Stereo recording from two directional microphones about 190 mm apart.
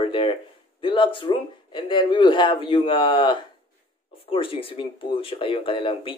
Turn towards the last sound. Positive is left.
turn(degrees=25)  # may be behind; listen again after turning